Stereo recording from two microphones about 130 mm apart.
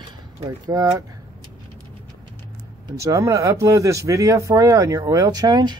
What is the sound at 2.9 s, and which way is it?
Speech, 25° right (ahead or behind).